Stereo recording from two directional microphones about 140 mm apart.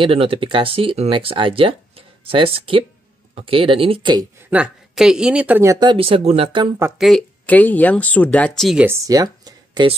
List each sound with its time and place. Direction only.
0.0 s speech: 40° right (ahead or behind)
4.5 s speech: 10° right (ahead or behind)
5.7 s speech: 35° right (ahead or behind)
7.0 s speech: centre (ahead or behind)
7.4 s speech: 10° left (ahead or behind)
8.7 s speech: 15° right (ahead or behind)